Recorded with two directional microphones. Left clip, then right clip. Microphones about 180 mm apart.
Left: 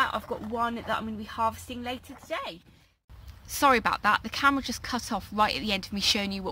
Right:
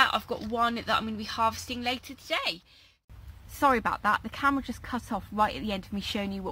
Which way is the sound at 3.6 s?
15° left (ahead or behind).